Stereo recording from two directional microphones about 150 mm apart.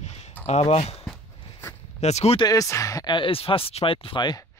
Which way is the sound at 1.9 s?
45° left (ahead or behind).